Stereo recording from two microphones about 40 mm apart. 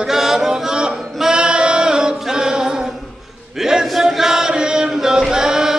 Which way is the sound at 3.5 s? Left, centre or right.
Centre.